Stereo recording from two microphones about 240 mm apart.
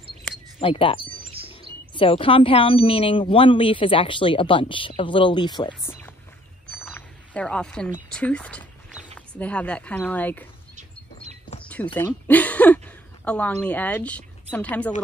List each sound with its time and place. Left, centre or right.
0.6 s speech: left
5.7 s speech: centre
11.7 s speech: centre